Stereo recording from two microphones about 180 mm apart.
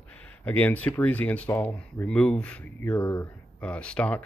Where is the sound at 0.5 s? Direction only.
10° left (ahead or behind).